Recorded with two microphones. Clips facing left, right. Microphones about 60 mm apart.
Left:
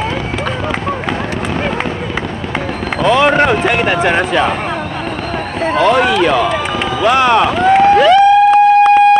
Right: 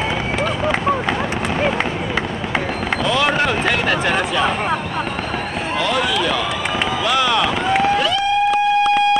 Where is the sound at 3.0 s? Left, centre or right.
Left.